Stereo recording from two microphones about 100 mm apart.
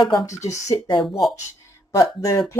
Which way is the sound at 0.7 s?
50° left (ahead or behind).